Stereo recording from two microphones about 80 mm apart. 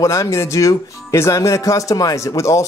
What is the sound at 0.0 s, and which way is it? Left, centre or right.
Speech, left.